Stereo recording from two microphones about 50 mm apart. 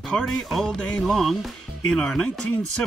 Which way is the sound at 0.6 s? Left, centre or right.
Centre.